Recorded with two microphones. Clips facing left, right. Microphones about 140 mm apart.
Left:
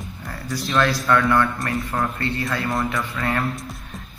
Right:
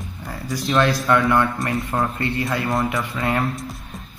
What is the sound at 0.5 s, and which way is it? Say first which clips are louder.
A man's voice: right 2 dB; 15° right (ahead or behind).